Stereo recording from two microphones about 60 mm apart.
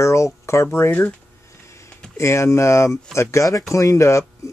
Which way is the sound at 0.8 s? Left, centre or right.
Left.